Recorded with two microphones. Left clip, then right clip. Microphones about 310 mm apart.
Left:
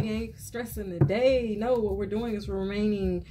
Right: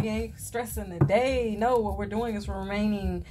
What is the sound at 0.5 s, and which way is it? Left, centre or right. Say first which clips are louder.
Speech: right 2 dB; centre.